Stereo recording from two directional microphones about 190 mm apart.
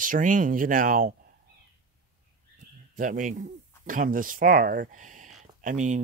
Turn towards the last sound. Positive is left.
turn(degrees=-40)  # may be behind; listen again after turning